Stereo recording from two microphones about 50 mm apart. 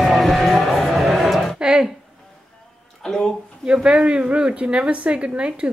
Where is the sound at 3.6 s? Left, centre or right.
Centre.